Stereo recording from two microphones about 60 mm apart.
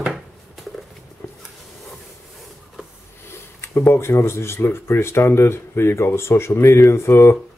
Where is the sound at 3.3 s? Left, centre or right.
Left.